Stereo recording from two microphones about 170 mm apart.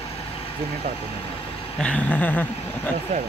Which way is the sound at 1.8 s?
10° left (ahead or behind).